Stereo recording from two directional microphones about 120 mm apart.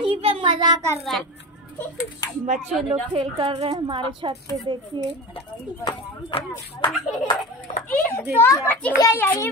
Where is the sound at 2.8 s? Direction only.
50° right (ahead or behind).